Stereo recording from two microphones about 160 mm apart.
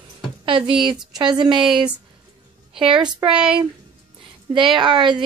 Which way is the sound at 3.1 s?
30° right (ahead or behind).